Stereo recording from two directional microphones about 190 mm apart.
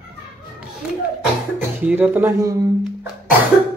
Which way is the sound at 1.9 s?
10° right (ahead or behind).